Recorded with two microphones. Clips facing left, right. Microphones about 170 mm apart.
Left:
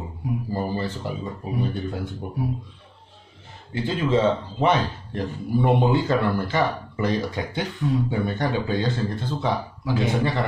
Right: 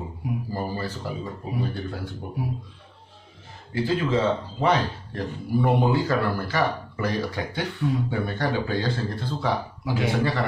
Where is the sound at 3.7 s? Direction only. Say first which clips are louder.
Left 1 dB; 25° left (ahead or behind).